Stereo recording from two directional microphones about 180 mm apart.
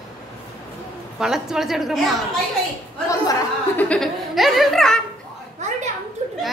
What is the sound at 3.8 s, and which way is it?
A woman's voice, 5° left (ahead or behind).